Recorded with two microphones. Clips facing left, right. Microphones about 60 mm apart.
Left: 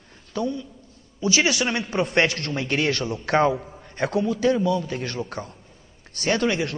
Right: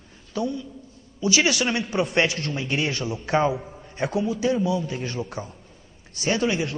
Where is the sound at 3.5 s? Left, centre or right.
Centre.